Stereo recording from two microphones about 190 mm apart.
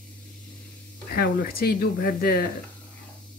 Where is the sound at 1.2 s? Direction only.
55° left (ahead or behind).